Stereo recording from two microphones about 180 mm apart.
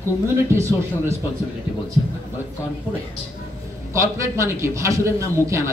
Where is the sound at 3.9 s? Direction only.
15° right (ahead or behind).